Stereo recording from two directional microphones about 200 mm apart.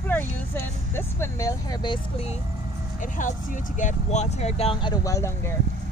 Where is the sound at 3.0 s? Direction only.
40° left (ahead or behind).